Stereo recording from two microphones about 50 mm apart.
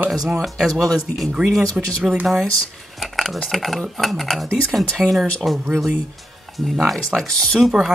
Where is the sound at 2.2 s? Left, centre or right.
Centre.